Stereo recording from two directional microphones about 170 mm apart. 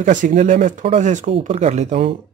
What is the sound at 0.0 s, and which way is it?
Speech, 50° right (ahead or behind).